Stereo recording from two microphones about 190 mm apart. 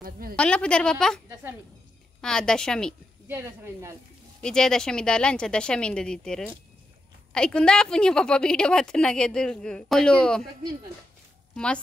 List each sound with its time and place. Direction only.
0.0 s a sound: 50° right (ahead or behind)
0.4 s a woman's voice: 5° left (ahead or behind)
2.2 s a woman's voice: 5° left (ahead or behind)
3.3 s speech: 10° right (ahead or behind)
4.4 s a woman's voice: 5° left (ahead or behind)
11.5 s speech: 5° left (ahead or behind)